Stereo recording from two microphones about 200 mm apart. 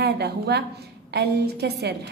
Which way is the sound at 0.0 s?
55° right (ahead or behind).